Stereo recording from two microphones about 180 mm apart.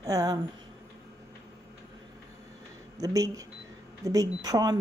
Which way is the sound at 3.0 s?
20° right (ahead or behind).